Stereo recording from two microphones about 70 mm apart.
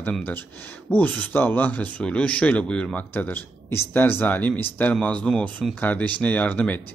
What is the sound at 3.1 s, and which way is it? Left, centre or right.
Speech, left.